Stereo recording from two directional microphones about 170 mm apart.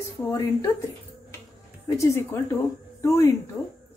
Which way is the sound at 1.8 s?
20° left (ahead or behind).